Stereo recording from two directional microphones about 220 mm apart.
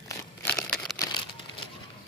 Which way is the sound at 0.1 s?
10° left (ahead or behind).